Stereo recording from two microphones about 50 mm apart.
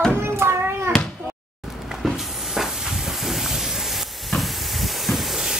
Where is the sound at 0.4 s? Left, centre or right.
Right.